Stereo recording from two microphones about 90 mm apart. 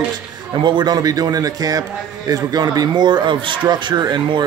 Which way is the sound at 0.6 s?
55° right (ahead or behind).